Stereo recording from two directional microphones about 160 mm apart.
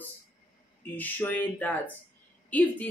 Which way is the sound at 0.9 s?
10° left (ahead or behind).